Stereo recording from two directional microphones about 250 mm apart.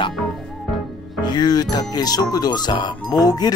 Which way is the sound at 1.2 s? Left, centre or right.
Centre.